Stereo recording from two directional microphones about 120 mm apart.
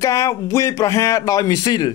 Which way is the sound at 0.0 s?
25° left (ahead or behind).